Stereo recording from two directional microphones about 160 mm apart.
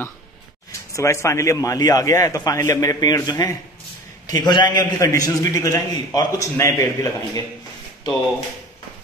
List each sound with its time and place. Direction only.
0.7 s a man's voice: 20° left (ahead or behind)